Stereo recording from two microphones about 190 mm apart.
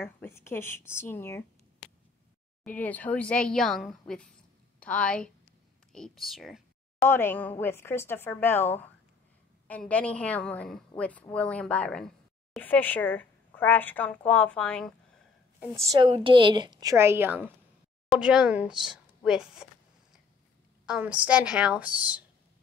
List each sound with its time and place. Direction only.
0.0 s a woman's voice: 15° left (ahead or behind)
2.6 s a woman's voice: 10° left (ahead or behind)
7.0 s a woman's voice: 10° left (ahead or behind)
15.9 s a woman's voice: 25° right (ahead or behind); by 19.7 s 5° right (ahead or behind)
20.8 s a woman's voice: 5° right (ahead or behind)